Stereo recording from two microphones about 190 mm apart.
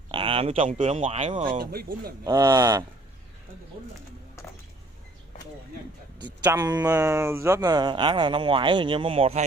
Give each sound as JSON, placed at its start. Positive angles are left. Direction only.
{"t": 0.1, "sound": "speech", "side_deg": -30}
{"t": 1.3, "sound": "speech", "side_deg": -25}
{"t": 1.6, "sound": "speech", "side_deg": -55}
{"t": 2.2, "sound": "speech", "side_deg": -20}
{"t": 6.4, "sound": "speech", "side_deg": -15}